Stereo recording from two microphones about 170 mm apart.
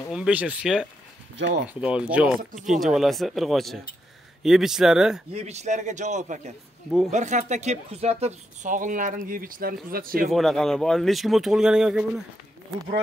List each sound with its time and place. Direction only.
0.1 s speech: 5° right (ahead or behind)
5.3 s speech: 40° right (ahead or behind); by 10.3 s 55° right (ahead or behind)
10.3 s speech: centre (ahead or behind)